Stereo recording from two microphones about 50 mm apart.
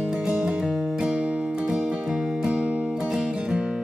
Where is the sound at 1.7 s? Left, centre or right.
Centre.